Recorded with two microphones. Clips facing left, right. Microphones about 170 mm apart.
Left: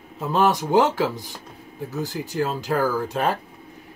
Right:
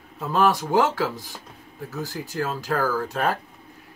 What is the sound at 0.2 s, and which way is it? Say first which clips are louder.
Speech: left 1 dB; 20° left (ahead or behind).